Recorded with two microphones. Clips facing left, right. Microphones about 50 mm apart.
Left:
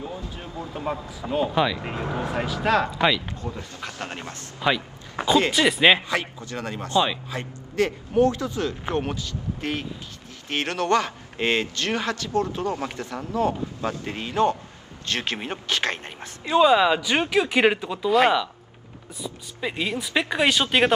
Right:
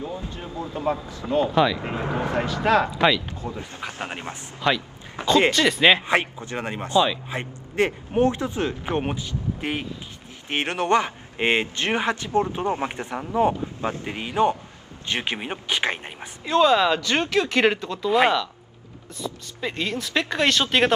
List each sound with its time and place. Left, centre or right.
0.0 s speech: centre
2.0 s speech: centre
2.2 s speech: centre
3.5 s speech: centre
4.6 s speech: centre
5.2 s speech: left
5.5 s speech: centre
6.0 s a man's voice: right
16.4 s speech: centre
19.1 s speech: centre